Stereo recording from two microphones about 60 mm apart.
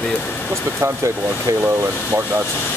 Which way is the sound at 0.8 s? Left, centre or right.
Right.